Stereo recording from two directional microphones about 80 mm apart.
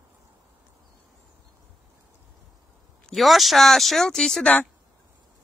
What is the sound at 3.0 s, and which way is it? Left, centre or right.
Speech, centre.